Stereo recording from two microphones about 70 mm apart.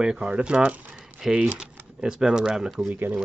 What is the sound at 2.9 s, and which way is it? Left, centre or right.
Speech, right.